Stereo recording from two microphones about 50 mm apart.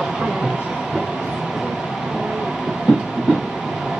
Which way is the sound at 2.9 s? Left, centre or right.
Centre.